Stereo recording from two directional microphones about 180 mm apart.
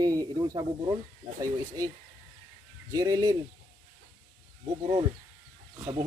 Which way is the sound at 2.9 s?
20° right (ahead or behind).